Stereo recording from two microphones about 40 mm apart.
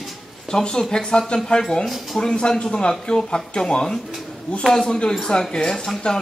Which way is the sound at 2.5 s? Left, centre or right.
Centre.